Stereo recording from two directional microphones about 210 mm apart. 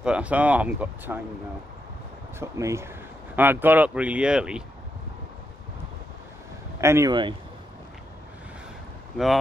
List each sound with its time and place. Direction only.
0.0 s speech: 5° right (ahead or behind)
2.3 s speech: 15° right (ahead or behind)
6.8 s speech: 15° right (ahead or behind)